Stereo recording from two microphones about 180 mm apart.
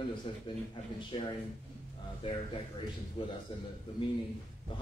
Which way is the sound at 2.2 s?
25° left (ahead or behind).